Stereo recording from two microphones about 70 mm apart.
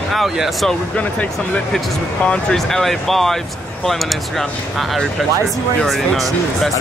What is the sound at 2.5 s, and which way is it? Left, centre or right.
Speech, centre.